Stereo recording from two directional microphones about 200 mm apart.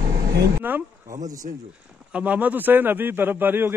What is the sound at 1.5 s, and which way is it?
Speech, 45° right (ahead or behind).